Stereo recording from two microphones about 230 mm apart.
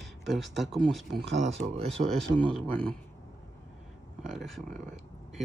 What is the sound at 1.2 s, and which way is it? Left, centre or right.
Speech, right.